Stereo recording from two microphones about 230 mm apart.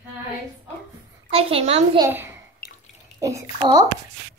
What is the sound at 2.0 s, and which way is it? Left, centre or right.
A woman's voice, centre.